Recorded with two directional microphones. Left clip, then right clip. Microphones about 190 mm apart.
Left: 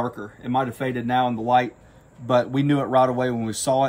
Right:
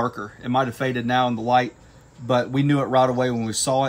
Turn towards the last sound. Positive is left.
turn(degrees=-5)  # may be behind; listen again after turning